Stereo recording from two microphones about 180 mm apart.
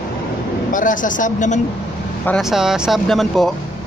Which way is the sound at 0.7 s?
45° left (ahead or behind).